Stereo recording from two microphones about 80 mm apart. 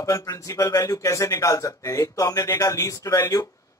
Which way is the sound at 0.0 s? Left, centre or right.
Left.